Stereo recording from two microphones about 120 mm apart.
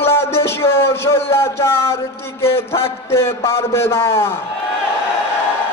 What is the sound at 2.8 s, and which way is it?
A man's voice, 20° left (ahead or behind).